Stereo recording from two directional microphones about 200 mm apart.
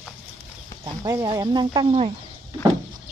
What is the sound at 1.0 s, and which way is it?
Speech, 15° right (ahead or behind).